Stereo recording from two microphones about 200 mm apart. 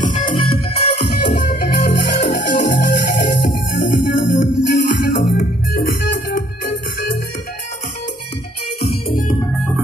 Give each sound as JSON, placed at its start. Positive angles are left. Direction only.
{"t": 0.0, "sound": "music", "side_deg": 40}
{"t": 1.6, "sound": "music", "side_deg": 55}
{"t": 5.0, "sound": "music", "side_deg": 45}